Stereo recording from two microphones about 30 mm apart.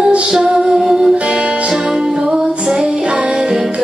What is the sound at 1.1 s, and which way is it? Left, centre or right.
Music, right.